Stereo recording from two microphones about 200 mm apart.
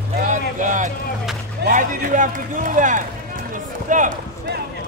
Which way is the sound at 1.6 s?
45° right (ahead or behind).